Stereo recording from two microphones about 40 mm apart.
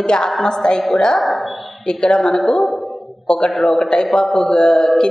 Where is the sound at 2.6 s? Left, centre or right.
Centre.